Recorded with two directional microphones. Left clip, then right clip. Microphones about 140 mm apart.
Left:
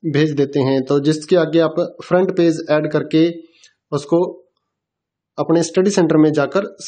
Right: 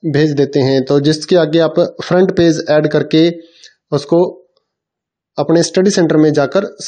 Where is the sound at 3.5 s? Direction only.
25° right (ahead or behind).